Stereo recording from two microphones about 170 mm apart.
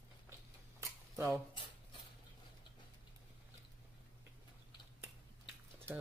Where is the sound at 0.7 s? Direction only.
15° right (ahead or behind).